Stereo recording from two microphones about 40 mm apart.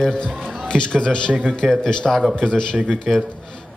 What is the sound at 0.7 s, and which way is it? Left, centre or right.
A man's voice, left.